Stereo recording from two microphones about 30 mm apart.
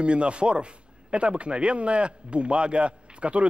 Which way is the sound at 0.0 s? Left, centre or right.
Right.